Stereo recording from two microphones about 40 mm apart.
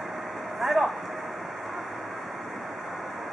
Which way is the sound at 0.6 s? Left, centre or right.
Centre.